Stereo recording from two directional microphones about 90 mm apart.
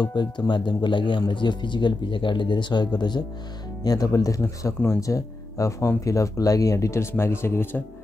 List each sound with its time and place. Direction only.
0.0 s speech: 55° left (ahead or behind); by 7.8 s 25° left (ahead or behind)